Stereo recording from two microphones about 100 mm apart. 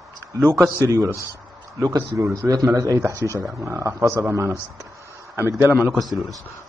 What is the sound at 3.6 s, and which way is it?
Speech, 30° right (ahead or behind).